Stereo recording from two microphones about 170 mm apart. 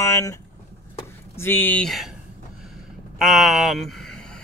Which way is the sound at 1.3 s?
15° left (ahead or behind).